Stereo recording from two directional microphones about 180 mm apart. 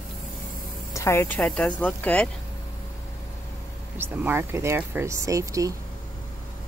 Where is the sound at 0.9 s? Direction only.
15° left (ahead or behind).